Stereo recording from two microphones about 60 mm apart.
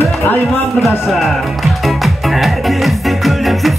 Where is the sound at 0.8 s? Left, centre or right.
Centre.